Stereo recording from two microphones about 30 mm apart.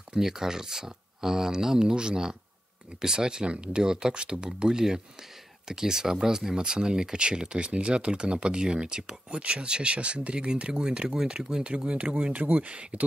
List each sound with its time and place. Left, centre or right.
0.1 s speech: centre
1.8 s speech: right
9.4 s speech: right
11.6 s speech: right